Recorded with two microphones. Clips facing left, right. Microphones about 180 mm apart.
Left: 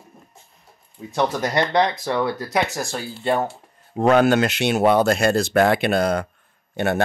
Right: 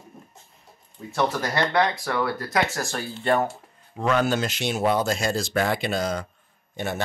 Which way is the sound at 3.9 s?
55° left (ahead or behind).